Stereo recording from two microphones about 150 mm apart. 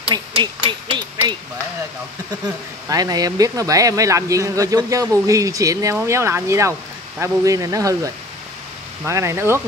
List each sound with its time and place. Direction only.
0.1 s speech: 30° right (ahead or behind)
2.9 s speech: 25° right (ahead or behind)